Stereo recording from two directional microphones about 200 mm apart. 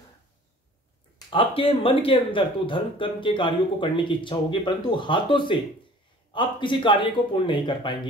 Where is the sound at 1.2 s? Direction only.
25° left (ahead or behind).